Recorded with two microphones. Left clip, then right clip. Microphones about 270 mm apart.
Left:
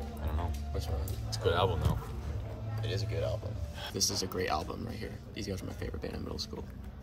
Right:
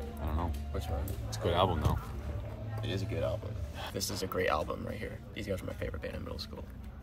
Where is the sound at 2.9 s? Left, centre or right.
Centre.